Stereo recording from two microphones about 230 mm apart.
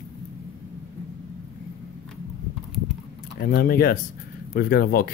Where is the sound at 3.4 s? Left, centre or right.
Left.